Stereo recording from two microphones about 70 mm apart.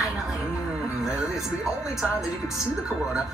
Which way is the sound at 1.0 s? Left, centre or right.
Centre.